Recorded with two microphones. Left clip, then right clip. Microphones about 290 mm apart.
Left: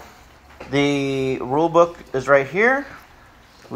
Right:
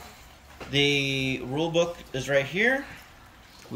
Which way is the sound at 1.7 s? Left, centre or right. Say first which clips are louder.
Left 9 dB; left.